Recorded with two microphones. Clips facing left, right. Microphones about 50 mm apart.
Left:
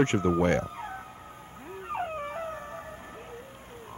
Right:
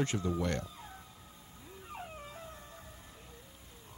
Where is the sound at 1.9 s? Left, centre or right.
Left.